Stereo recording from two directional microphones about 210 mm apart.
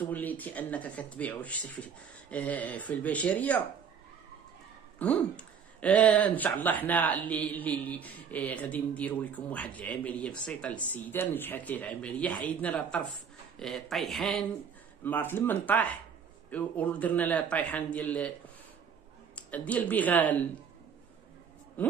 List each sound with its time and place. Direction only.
0.0 s speech: 10° left (ahead or behind)
4.9 s speech: 5° left (ahead or behind)
19.3 s speech: 5° left (ahead or behind)